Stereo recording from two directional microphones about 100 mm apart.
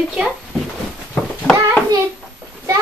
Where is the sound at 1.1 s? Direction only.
10° left (ahead or behind).